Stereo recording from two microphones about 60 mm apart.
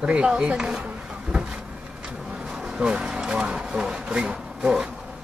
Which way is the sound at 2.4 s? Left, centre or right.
Centre.